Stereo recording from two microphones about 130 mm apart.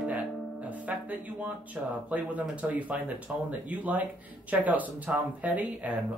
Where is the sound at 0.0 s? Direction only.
10° right (ahead or behind).